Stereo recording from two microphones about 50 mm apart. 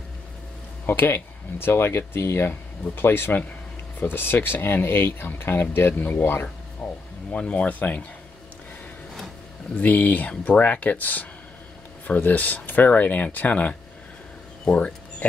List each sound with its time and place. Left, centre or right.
0.8 s speech: left
6.8 s a sound: centre
7.2 s speech: left
9.8 s speech: left
14.6 s speech: left